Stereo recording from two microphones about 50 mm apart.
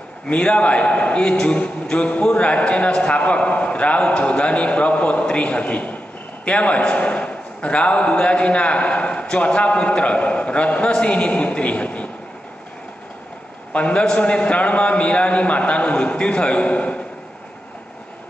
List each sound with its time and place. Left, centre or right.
0.3 s a man's voice: left
13.7 s a man's voice: left